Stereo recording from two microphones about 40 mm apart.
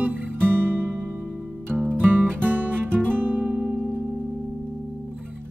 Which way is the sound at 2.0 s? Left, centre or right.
Right.